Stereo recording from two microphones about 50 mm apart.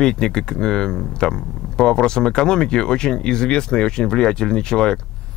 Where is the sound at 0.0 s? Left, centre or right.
Centre.